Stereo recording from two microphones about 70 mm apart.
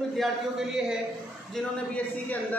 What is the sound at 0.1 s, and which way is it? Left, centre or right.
Speech, centre.